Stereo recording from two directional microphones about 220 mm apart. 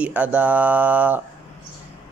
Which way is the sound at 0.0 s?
5° right (ahead or behind).